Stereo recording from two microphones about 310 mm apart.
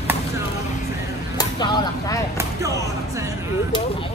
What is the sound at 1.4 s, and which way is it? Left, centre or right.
Speech, centre.